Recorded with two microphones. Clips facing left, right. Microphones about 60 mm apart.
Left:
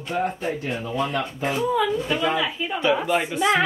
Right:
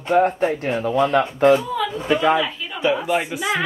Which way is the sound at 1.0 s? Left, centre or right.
Right.